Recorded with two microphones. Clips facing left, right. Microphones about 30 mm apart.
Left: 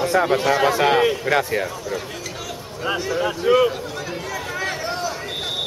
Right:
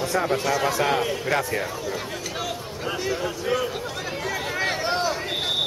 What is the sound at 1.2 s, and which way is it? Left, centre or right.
Speech, centre.